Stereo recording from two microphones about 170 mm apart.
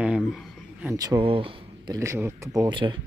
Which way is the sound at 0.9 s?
25° right (ahead or behind).